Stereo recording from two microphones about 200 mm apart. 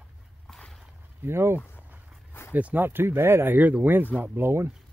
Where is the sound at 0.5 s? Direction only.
5° left (ahead or behind).